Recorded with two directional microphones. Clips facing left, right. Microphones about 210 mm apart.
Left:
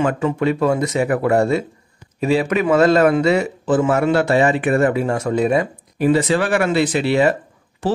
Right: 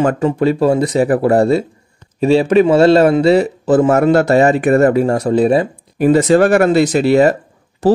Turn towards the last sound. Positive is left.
turn(degrees=-40)  # may be behind; listen again after turning